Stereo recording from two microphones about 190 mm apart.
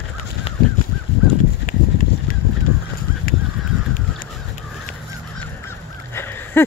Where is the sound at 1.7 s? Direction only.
45° left (ahead or behind).